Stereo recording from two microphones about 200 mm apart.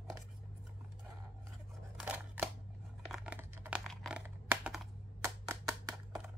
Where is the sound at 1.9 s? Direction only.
5° right (ahead or behind).